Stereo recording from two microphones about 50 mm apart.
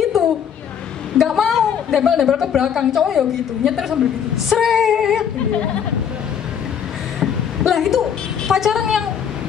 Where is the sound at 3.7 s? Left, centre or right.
Centre.